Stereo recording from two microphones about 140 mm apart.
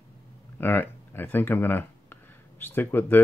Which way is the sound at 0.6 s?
15° left (ahead or behind).